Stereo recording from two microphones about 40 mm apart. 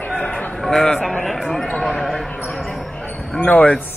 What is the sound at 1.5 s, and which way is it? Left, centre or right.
Speech, centre.